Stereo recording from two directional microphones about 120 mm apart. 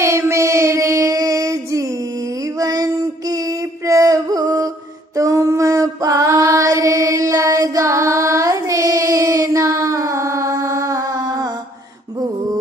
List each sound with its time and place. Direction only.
0.0 s child singing: 25° right (ahead or behind)
2.6 s music: 30° right (ahead or behind)
5.1 s female singing: 25° right (ahead or behind)